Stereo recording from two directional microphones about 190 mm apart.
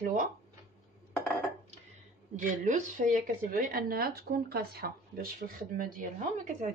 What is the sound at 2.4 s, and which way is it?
Speech, 40° right (ahead or behind).